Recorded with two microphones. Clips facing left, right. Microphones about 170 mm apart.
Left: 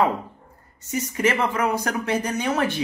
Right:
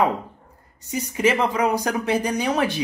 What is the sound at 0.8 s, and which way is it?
A woman's voice, 15° right (ahead or behind).